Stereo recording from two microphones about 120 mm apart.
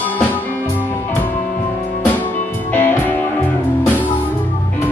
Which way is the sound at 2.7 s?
15° left (ahead or behind).